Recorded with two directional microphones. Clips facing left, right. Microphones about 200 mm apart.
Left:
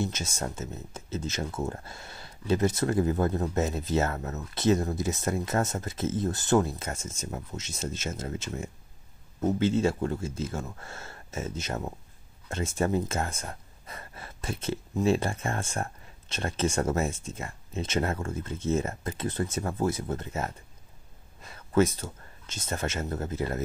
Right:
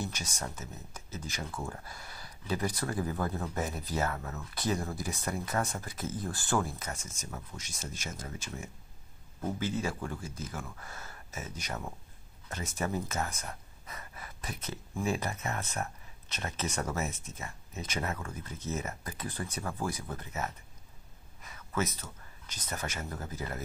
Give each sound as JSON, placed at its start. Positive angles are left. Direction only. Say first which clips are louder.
{"t": 0.0, "sound": "speech", "louder": "left 6 dB", "side_deg": 25}
{"t": 9.4, "sound": "speech", "louder": "left 9 dB", "side_deg": 25}
{"t": 21.4, "sound": "a sound", "louder": "left 10 dB", "side_deg": 30}
{"t": 23.3, "sound": "speech", "louder": "left 8 dB", "side_deg": 25}